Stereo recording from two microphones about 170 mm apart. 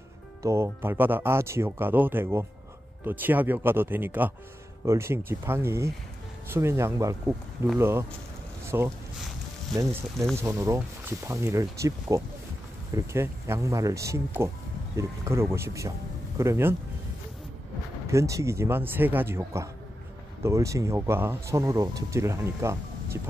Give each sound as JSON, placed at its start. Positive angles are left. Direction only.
{"t": 0.4, "sound": "speech", "side_deg": -15}
{"t": 10.4, "sound": "speech", "side_deg": -15}
{"t": 18.0, "sound": "speech", "side_deg": -15}